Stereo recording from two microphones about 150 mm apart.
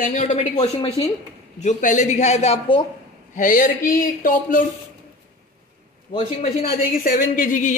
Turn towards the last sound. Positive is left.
turn(degrees=60)  # may be behind; listen again after turning